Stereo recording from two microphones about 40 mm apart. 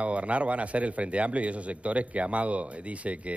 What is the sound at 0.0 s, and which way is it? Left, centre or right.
A man's voice, right.